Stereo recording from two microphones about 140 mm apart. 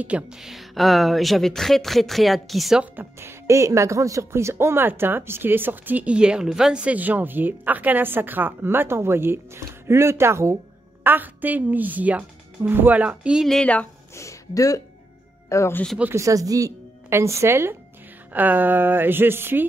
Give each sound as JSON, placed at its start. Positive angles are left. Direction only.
{"t": 0.0, "sound": "speech", "side_deg": -5}
{"t": 3.0, "sound": "speech", "side_deg": -20}
{"t": 14.1, "sound": "speech", "side_deg": 25}
{"t": 16.0, "sound": "a woman's voice", "side_deg": -20}